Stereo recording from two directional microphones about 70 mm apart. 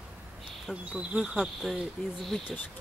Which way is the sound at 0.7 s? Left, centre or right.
Centre.